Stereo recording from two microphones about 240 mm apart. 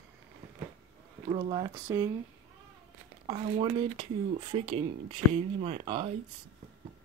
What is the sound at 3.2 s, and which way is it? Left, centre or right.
Speech, right.